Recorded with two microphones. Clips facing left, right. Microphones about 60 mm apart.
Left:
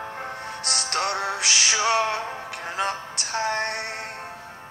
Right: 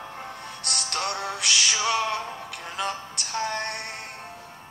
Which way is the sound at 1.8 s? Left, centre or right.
Left.